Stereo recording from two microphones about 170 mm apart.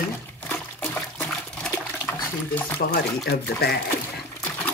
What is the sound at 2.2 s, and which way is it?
Speech, 10° left (ahead or behind).